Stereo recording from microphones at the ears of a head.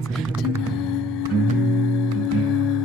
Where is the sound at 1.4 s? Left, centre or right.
Left.